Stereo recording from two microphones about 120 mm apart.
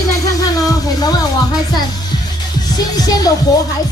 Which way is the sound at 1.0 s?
35° left (ahead or behind).